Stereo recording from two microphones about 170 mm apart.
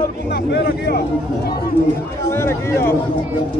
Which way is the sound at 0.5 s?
65° left (ahead or behind).